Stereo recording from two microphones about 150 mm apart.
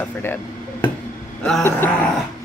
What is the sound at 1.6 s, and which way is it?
Speech, 15° left (ahead or behind).